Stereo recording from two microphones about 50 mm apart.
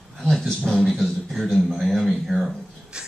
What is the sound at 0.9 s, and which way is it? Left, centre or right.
A man's voice, centre.